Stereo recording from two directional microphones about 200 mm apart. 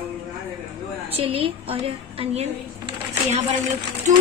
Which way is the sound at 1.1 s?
30° right (ahead or behind).